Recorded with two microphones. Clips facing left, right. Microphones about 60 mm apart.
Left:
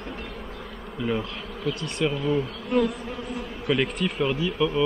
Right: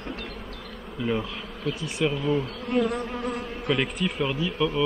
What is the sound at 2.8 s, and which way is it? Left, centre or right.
Insect, right.